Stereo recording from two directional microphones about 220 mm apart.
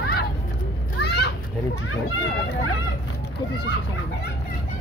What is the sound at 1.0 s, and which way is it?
Children playing, 50° left (ahead or behind).